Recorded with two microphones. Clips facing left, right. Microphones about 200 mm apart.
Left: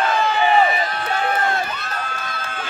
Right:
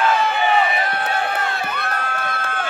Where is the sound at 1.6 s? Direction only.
60° right (ahead or behind).